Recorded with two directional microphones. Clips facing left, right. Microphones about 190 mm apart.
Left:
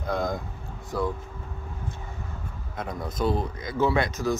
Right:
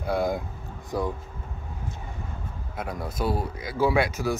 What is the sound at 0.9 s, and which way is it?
Speech, 15° right (ahead or behind).